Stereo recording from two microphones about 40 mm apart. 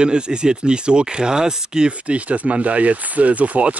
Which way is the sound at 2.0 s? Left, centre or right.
Right.